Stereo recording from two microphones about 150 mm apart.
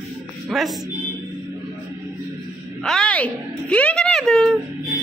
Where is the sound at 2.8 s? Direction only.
5° left (ahead or behind).